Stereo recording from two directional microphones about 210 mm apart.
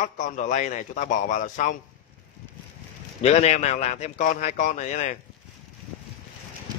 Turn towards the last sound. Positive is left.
turn(degrees=35)  # may be behind; listen again after turning